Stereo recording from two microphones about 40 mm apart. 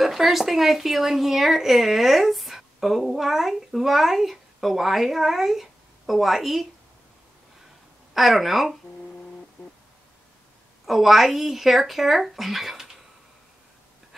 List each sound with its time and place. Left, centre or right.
0.0 s speech: centre
8.1 s speech: centre
10.9 s speech: centre